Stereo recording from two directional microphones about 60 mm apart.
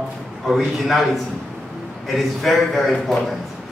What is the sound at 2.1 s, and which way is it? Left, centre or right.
A man's voice, centre.